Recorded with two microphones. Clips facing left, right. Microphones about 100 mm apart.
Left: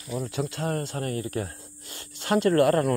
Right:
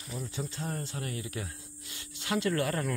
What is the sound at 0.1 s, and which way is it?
Speech, 70° left (ahead or behind).